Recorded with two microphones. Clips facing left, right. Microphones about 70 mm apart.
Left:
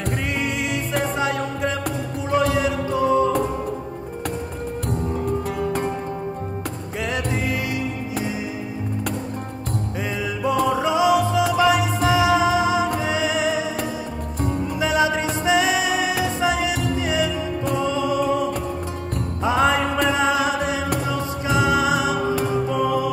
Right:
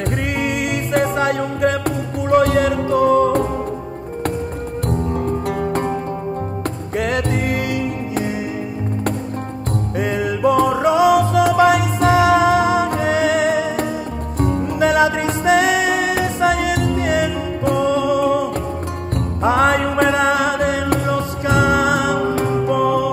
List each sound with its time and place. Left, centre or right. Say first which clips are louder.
0.4 s music: right 4 dB; right
4.8 s music: right 4 dB; right
7.0 s music: right 5 dB; right
9.9 s music: right 9 dB; right
22.2 s music: right 3 dB; right
22.7 s music: right 5 dB; right